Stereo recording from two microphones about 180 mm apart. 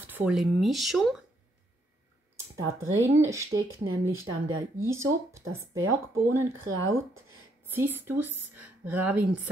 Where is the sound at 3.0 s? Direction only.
15° right (ahead or behind).